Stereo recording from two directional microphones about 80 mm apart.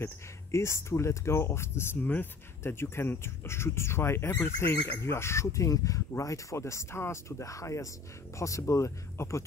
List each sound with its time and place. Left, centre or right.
0.0 s speech: left